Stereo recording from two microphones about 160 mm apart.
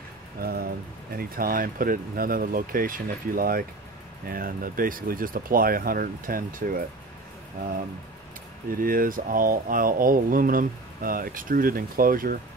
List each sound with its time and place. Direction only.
0.4 s speech: 70° right (ahead or behind)
8.6 s speech: 65° right (ahead or behind)